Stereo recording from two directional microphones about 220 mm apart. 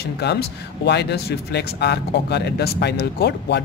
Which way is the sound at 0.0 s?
50° left (ahead or behind).